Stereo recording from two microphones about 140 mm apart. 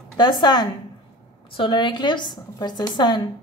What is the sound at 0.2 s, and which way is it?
A woman's voice, 30° left (ahead or behind).